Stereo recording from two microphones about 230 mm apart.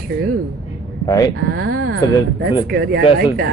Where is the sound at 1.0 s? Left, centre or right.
Centre.